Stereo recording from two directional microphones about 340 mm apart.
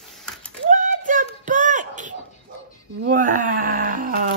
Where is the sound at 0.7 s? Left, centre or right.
Right.